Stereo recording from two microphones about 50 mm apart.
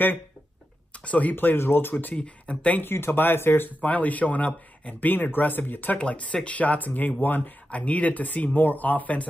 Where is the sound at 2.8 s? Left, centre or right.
Left.